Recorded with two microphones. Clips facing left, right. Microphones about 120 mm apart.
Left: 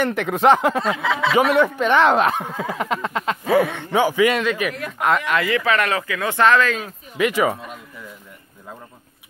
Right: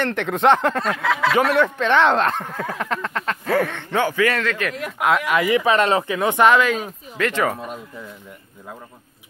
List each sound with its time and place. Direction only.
0.0 s speech: 5° left (ahead or behind)
4.8 s speech: 5° right (ahead or behind)
7.2 s speech: 10° left (ahead or behind)